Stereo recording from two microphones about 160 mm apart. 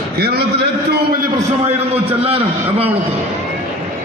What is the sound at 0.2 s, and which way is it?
A man's voice, 90° right.